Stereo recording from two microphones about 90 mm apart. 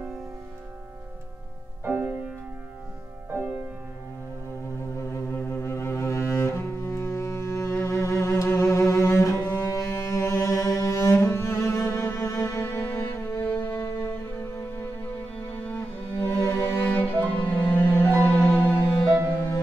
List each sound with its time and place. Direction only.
1.9 s music: 15° right (ahead or behind)
4.7 s cello: 30° left (ahead or behind)
16.3 s music: 30° left (ahead or behind)